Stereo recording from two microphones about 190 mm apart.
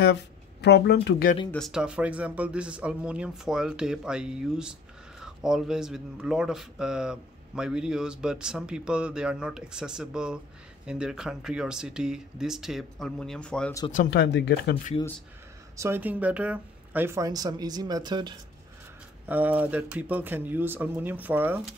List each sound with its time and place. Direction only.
0.0 s speech: 65° left (ahead or behind)
1.5 s speech: centre (ahead or behind)
14.1 s speech: 65° left (ahead or behind)
15.7 s speech: 15° right (ahead or behind)
19.2 s speech: 10° right (ahead or behind)